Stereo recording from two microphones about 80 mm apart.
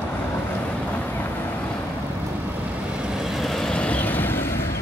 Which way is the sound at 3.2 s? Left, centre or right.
Centre.